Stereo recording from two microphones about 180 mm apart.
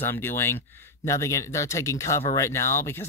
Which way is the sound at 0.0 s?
10° left (ahead or behind).